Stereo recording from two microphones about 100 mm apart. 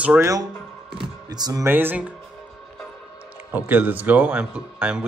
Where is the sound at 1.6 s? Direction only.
20° right (ahead or behind).